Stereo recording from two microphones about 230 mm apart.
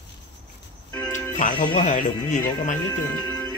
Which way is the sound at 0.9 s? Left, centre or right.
Centre.